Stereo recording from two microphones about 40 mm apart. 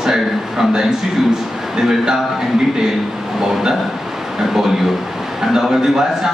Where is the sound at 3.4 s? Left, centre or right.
Centre.